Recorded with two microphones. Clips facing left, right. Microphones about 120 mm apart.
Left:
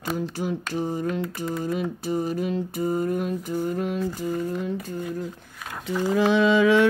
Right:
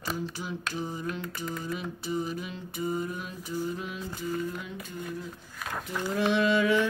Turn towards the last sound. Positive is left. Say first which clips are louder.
# left 6 dB
turn(degrees=90)